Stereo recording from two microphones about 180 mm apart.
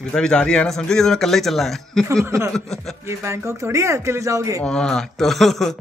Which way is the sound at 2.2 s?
15° right (ahead or behind).